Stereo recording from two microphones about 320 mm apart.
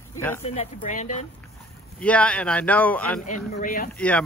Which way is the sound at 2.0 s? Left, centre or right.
Centre.